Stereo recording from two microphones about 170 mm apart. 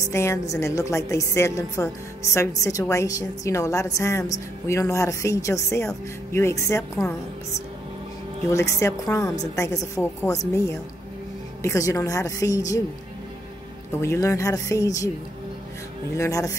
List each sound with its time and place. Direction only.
0.0 s a woman's voice: 15° left (ahead or behind)
8.5 s a woman's voice: 15° left (ahead or behind)
11.6 s a woman's voice: 20° left (ahead or behind)
13.9 s a woman's voice: 15° left (ahead or behind)
16.2 s a woman's voice: 20° left (ahead or behind)